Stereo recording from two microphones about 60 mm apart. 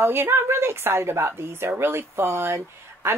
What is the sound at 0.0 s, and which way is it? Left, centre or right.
Speech, right.